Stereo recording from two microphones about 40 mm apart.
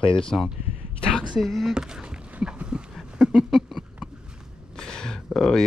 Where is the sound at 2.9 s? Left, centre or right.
Centre.